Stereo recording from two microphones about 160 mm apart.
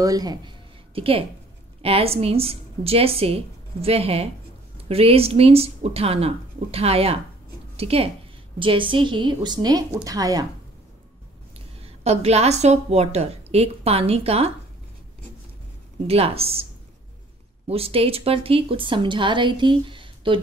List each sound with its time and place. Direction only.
0.0 s a woman's voice: 25° right (ahead or behind)
11.5 s a woman's voice: 40° right (ahead or behind)
16.1 s a woman's voice: 40° right (ahead or behind)
17.6 s a woman's voice: 35° right (ahead or behind)